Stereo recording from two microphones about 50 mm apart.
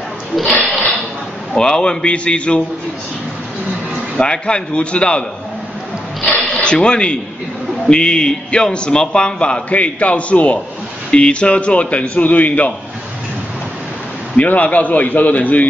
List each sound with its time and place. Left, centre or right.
1.5 s a man's voice: centre
4.2 s a man's voice: centre
6.5 s a man's voice: centre
14.3 s a man's voice: left